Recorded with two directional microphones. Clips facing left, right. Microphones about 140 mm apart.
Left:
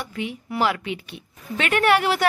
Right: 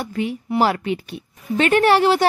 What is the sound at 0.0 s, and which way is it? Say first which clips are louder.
A woman's voice: right 6 dB; 40° right (ahead or behind).